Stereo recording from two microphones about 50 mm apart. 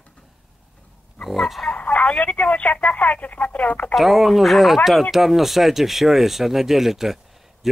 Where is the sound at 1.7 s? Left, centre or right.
Left.